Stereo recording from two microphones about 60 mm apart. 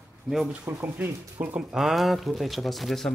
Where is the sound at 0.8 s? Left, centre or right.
Right.